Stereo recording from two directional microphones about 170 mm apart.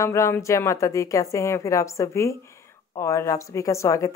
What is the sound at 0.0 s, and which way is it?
A woman's voice, 15° left (ahead or behind).